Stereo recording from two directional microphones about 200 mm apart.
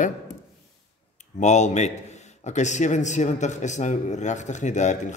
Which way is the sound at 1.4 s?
35° left (ahead or behind).